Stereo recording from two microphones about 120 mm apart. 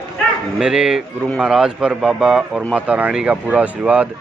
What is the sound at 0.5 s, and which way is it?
A man's voice, 5° right (ahead or behind).